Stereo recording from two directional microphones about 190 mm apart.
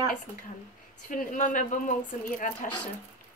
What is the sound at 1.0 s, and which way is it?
Speech, 45° left (ahead or behind).